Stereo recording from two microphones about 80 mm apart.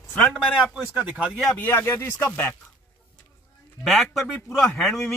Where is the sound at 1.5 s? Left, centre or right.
Left.